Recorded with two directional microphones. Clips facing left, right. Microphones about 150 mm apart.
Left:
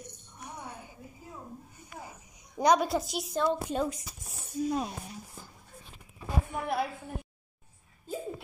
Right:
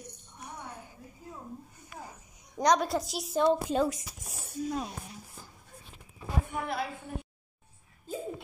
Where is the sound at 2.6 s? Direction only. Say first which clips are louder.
Left 1 dB; 5° left (ahead or behind).